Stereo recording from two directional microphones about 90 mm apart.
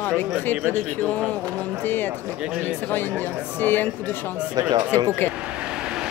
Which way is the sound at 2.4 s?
10° right (ahead or behind).